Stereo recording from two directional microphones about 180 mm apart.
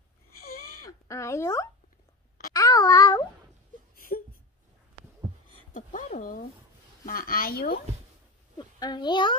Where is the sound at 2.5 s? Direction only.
20° left (ahead or behind).